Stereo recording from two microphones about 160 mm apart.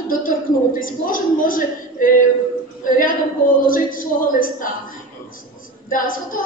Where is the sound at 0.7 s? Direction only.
60° left (ahead or behind).